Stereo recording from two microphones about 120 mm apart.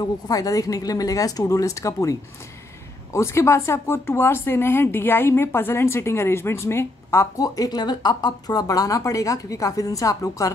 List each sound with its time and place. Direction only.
0.0 s speech: 30° left (ahead or behind)